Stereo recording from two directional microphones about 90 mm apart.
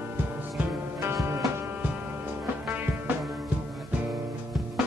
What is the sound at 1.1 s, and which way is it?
Music, 30° right (ahead or behind).